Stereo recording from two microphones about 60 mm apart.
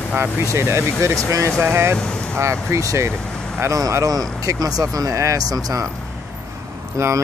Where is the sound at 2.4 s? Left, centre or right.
Right.